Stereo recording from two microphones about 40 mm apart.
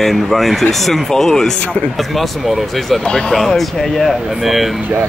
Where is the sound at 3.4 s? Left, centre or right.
Centre.